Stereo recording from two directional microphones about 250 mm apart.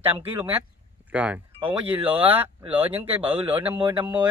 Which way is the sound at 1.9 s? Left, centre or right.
Centre.